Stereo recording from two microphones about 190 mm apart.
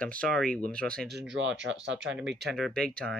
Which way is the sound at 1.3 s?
80° right.